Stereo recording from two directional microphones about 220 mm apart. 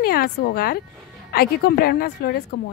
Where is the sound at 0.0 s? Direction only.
45° left (ahead or behind).